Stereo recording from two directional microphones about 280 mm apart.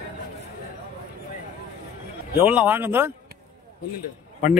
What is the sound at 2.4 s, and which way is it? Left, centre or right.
Speech, centre.